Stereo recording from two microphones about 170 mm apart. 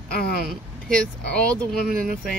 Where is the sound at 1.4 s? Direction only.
5° left (ahead or behind).